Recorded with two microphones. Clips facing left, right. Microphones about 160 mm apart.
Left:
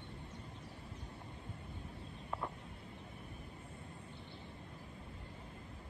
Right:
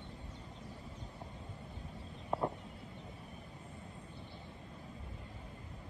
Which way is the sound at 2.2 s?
30° right (ahead or behind).